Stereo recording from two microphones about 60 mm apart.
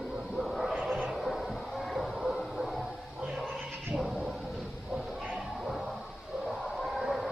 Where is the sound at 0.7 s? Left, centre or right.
Right.